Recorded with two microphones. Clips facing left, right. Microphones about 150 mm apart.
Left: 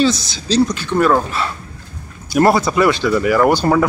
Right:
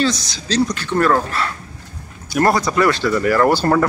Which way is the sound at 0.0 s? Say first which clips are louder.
Left 3 dB; 25° left (ahead or behind).